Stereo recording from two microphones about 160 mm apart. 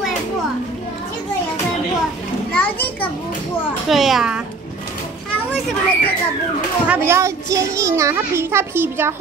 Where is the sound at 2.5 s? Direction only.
10° left (ahead or behind).